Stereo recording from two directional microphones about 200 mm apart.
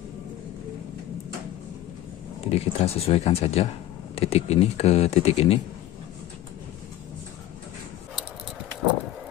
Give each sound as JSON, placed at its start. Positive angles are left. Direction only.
{"t": 2.4, "sound": "speech", "side_deg": 30}